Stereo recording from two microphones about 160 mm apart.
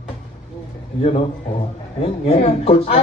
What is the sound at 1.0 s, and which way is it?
A man's voice, 45° left (ahead or behind).